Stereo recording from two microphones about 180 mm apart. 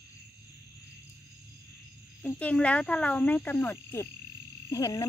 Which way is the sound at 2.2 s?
5° left (ahead or behind).